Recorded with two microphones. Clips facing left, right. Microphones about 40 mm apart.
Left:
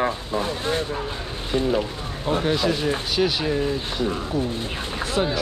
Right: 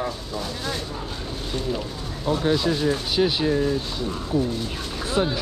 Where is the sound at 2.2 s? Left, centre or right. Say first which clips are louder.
Even; left.